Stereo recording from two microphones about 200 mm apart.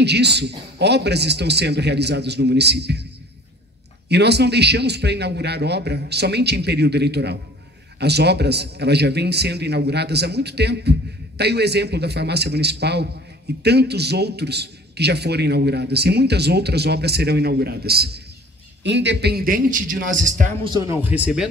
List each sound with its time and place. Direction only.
0.0 s a man's voice: 55° right (ahead or behind)
4.1 s a man's voice: 55° right (ahead or behind); by 20.5 s 40° right (ahead or behind)
21.0 s speech: 5° right (ahead or behind)